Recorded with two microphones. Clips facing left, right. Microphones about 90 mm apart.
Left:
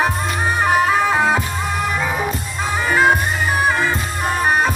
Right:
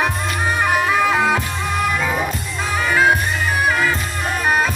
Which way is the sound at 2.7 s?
25° left (ahead or behind).